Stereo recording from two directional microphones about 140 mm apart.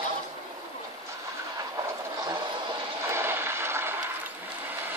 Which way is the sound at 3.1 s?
15° right (ahead or behind).